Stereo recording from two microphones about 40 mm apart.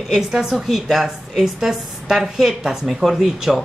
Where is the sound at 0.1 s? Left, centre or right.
Centre.